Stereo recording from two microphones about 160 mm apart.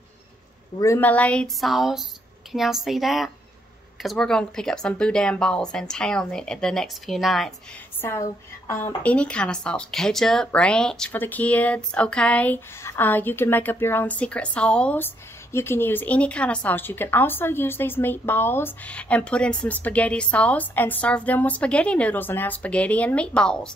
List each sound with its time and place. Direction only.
0.7 s speech: 15° left (ahead or behind); by 7.5 s centre (ahead or behind)
8.0 s speech: 15° left (ahead or behind)